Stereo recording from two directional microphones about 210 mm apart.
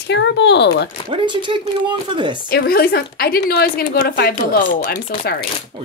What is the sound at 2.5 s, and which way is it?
A woman's voice, 45° left (ahead or behind).